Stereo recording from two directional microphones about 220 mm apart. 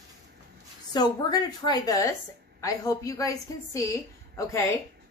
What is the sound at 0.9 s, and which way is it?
A woman's voice, 20° left (ahead or behind).